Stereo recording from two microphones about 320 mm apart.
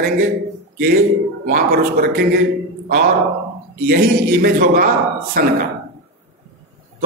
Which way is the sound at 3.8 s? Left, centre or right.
Right.